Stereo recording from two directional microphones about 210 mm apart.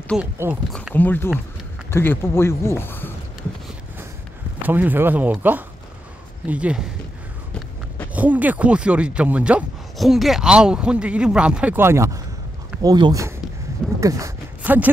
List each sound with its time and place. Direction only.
0.2 s speech: 10° right (ahead or behind)
0.7 s a man's voice: 5° left (ahead or behind)
4.6 s speech: 10° right (ahead or behind)
8.1 s speech: 5° right (ahead or behind)
13.9 s a sound: 15° right (ahead or behind)